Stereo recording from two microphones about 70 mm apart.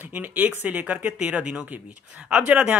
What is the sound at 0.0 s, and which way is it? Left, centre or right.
Speech, right.